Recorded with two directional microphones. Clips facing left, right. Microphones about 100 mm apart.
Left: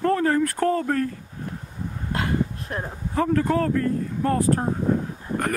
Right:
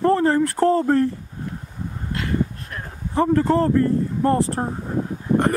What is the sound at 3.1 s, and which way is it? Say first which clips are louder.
Speech: right 4 dB; 20° right (ahead or behind).